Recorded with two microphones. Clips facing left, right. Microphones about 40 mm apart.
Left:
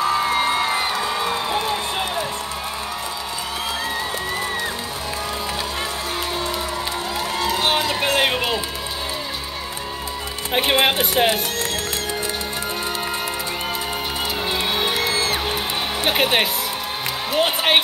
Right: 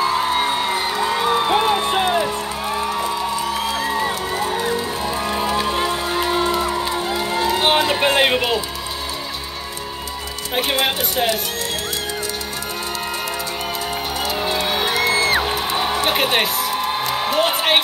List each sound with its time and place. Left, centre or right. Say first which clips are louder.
0.1 s music: even; right
5.4 s music: right 6 dB; right
7.5 s a sound: right 4 dB; centre
10.5 s music: left 2 dB; centre
14.4 s music: right 1 dB; centre
15.1 s music: right 5 dB; right
15.4 s music: right 3 dB; centre